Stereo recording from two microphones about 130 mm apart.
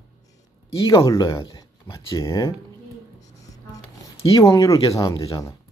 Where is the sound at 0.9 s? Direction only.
30° left (ahead or behind).